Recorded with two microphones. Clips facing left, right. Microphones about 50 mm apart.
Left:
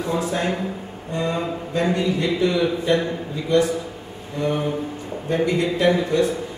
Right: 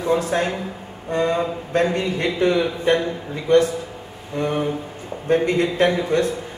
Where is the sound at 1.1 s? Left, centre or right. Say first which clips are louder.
Right 4 dB; right.